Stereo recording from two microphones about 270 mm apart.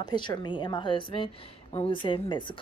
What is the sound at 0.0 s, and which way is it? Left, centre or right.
A woman's voice, centre.